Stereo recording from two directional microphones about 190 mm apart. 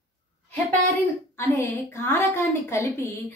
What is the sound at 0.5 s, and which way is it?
A woman's voice, 10° left (ahead or behind).